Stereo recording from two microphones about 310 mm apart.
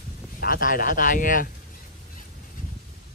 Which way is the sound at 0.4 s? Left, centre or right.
Left.